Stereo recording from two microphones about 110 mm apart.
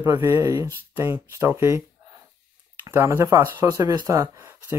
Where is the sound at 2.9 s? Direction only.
20° right (ahead or behind).